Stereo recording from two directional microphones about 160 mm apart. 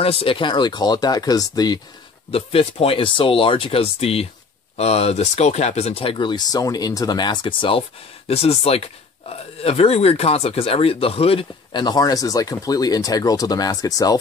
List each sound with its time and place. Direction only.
0.0 s speech: 35° left (ahead or behind)
2.3 s speech: 35° left (ahead or behind)